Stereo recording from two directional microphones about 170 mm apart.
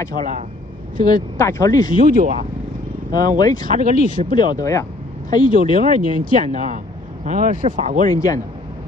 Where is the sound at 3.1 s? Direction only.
20° left (ahead or behind).